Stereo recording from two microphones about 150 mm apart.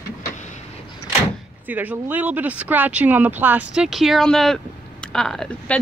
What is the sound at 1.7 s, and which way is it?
Speech, 10° right (ahead or behind).